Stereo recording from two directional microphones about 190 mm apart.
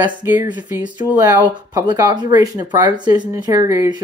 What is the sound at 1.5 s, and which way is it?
Speech, 20° right (ahead or behind).